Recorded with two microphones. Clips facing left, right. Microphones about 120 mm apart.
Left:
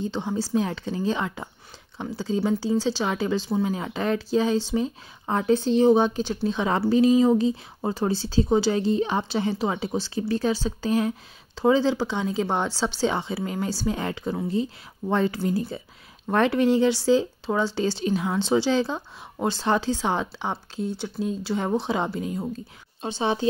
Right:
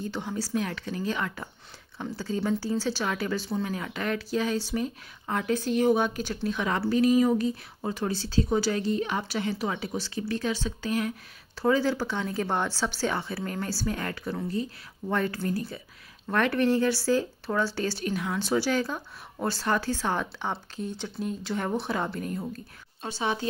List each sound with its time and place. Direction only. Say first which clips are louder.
0.0 s speech: left 5 dB; 20° left (ahead or behind)
23.0 s speech: left 6 dB; 25° left (ahead or behind)